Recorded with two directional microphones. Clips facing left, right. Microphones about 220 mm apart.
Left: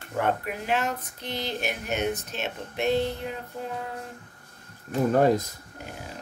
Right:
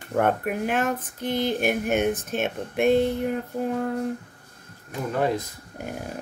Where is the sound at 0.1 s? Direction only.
55° right (ahead or behind).